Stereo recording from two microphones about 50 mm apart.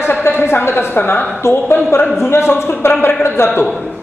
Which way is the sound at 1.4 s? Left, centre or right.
Left.